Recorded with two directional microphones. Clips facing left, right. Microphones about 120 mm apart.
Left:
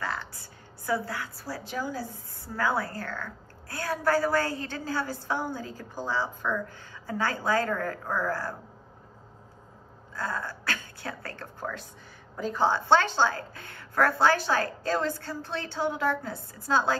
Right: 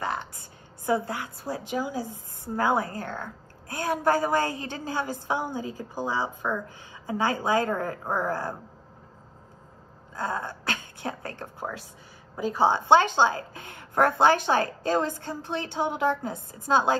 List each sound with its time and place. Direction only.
0.0 s a woman's voice: 20° right (ahead or behind)
10.1 s a woman's voice: 20° right (ahead or behind)